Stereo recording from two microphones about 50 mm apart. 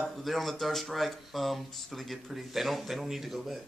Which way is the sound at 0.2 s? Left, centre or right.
Centre.